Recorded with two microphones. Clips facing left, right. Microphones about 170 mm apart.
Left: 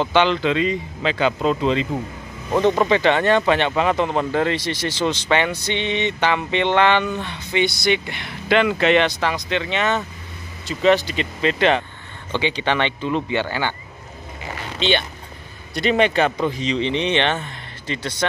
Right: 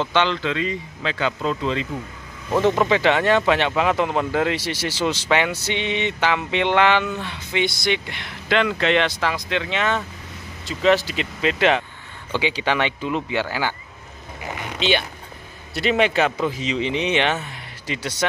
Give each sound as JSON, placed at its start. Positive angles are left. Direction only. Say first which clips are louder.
{"t": 0.0, "sound": "speech", "louder": "left 3 dB", "side_deg": 10}
{"t": 2.5, "sound": "speech", "louder": "left 1 dB", "side_deg": 0}
{"t": 14.5, "sound": "a sound", "louder": "right 1 dB", "side_deg": -15}
{"t": 14.8, "sound": "speech", "louder": "left 1 dB", "side_deg": -5}